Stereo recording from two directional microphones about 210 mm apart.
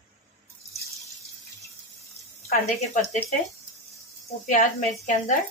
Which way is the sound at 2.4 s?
35° left (ahead or behind).